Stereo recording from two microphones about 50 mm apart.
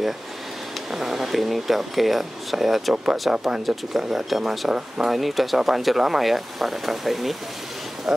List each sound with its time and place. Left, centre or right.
0.9 s speech: centre
2.9 s speech: centre
3.4 s speech: centre
5.1 s speech: centre